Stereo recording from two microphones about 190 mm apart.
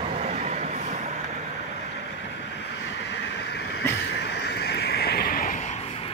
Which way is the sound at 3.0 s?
65° left (ahead or behind).